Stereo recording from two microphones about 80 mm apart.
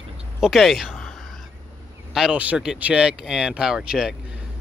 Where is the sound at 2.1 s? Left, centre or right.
Centre.